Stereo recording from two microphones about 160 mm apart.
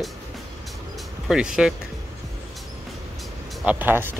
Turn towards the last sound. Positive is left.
turn(degrees=-10)  # may be behind; listen again after turning